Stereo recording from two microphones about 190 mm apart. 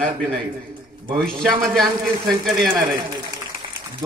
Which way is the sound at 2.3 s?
50° right (ahead or behind).